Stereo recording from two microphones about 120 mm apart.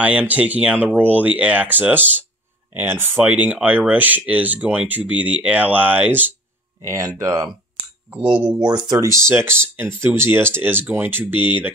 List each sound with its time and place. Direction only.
0.0 s speech: 10° right (ahead or behind)
6.9 s speech: 25° right (ahead or behind)
8.5 s speech: 35° right (ahead or behind)
9.1 s speech: 20° right (ahead or behind)